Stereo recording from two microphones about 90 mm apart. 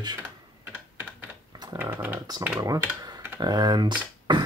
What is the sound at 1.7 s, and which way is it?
Speech, 25° right (ahead or behind).